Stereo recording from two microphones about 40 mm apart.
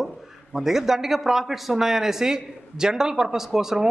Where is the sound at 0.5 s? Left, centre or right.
Centre.